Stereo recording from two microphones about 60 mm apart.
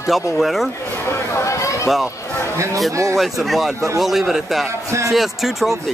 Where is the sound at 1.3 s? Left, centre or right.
Left.